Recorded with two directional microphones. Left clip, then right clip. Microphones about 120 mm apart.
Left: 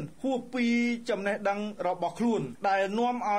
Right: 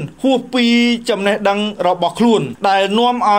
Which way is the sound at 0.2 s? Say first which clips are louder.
Right 15 dB; 25° right (ahead or behind).